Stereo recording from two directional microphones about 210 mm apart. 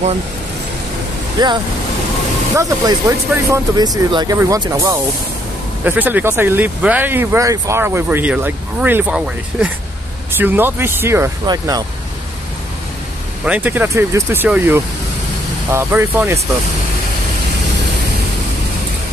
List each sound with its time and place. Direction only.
1.4 s speech: 20° right (ahead or behind)
13.5 s speech: 10° right (ahead or behind)